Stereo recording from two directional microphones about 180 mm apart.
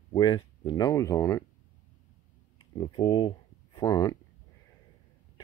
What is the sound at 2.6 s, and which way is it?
Speech, 25° left (ahead or behind).